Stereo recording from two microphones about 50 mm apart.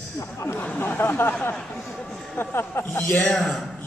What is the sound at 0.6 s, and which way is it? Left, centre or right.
Speech, left.